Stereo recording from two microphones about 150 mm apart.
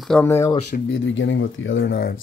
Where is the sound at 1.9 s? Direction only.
90° left.